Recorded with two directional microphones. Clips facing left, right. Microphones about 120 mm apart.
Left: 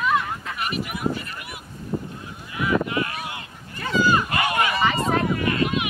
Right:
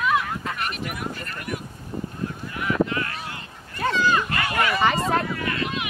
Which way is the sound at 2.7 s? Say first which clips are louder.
Even; 15° left (ahead or behind).